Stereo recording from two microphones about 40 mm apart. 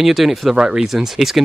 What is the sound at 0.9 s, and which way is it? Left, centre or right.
Speech, centre.